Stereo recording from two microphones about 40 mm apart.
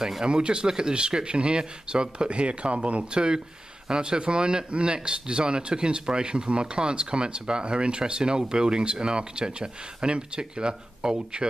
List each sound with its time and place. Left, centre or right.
0.2 s speech: right